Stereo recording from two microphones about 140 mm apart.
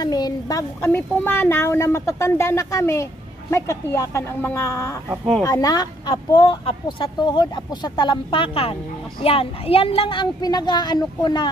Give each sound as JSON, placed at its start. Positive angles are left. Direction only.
{"t": 0.0, "sound": "a woman's voice", "side_deg": 25}
{"t": 5.1, "sound": "speech", "side_deg": -5}
{"t": 5.4, "sound": "a woman's voice", "side_deg": 25}